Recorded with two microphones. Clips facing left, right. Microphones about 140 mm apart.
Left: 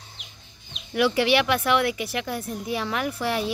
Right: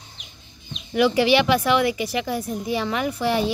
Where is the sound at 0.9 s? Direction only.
Centre (ahead or behind).